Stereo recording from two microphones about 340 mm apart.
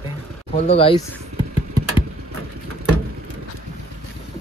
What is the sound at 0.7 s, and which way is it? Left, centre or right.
Speech, centre.